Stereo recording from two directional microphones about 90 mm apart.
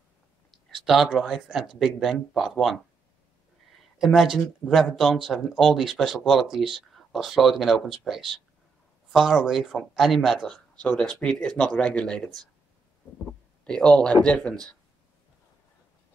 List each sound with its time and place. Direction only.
0.7 s speech: 5° right (ahead or behind)
4.0 s speech: 5° right (ahead or behind)
10.9 s speech: 15° left (ahead or behind)
13.7 s speech: 10° left (ahead or behind)